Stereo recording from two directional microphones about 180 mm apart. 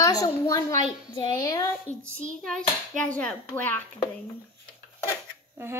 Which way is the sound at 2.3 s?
5° left (ahead or behind).